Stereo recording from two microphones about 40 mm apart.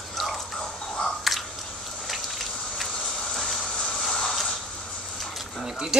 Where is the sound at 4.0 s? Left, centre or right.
Centre.